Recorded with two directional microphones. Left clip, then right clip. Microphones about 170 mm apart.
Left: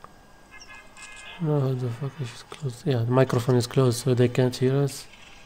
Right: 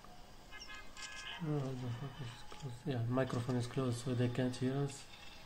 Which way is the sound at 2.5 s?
80° left.